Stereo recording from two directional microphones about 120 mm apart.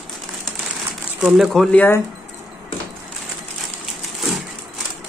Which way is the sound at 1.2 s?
Centre (ahead or behind).